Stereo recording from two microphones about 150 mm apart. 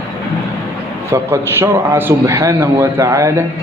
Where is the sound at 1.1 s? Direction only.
15° right (ahead or behind).